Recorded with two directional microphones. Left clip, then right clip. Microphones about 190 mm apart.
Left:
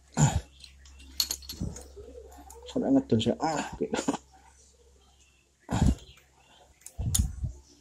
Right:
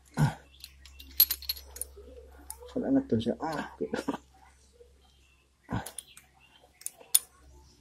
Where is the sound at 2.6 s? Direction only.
15° left (ahead or behind).